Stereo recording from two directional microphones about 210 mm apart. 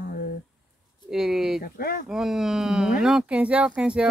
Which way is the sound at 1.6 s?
45° left (ahead or behind).